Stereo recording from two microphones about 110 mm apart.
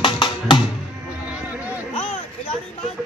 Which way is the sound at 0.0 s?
45° left (ahead or behind).